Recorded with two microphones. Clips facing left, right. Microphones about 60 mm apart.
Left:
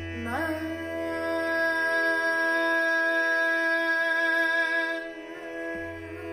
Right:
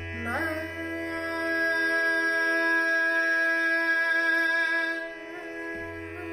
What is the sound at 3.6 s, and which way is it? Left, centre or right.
Music, right.